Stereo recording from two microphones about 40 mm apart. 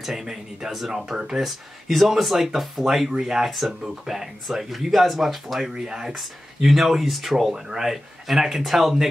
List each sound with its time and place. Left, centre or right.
0.0 s speech: centre
5.9 s speech: centre